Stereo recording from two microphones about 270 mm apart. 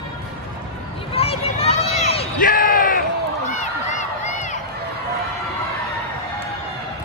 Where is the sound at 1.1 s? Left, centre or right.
Left.